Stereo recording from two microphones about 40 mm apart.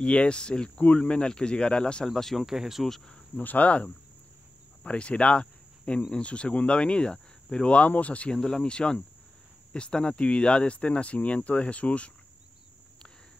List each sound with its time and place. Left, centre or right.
0.0 s speech: left
2.0 s speech: centre
2.4 s speech: centre
3.3 s speech: left
8.3 s speech: centre; by 12.1 s left